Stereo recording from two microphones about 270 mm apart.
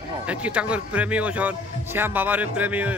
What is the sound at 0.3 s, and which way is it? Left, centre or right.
Speech, centre.